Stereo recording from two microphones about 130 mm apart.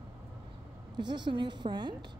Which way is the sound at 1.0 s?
35° right (ahead or behind).